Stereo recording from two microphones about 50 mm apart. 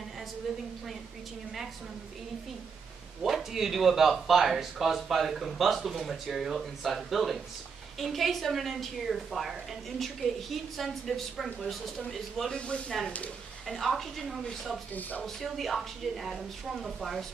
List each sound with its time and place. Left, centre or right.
3.2 s a woman's voice: centre
12.4 s speech: left
13.7 s a woman's voice: centre
15.0 s speech: left
15.2 s a woman's voice: centre